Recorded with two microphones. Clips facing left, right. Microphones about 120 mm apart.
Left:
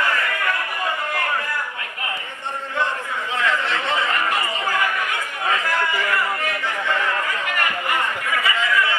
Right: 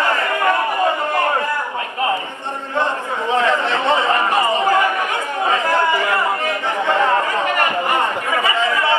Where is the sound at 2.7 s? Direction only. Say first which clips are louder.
Right 5 dB; 25° right (ahead or behind).